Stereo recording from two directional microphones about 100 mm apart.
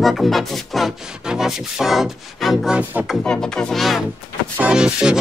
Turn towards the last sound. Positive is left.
turn(degrees=-10)  # may be behind; listen again after turning